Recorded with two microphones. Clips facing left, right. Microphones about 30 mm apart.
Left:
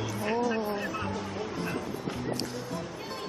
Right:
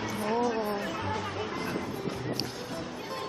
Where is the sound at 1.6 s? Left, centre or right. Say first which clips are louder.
Even; centre.